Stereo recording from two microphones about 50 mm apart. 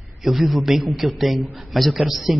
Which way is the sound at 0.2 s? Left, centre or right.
Centre.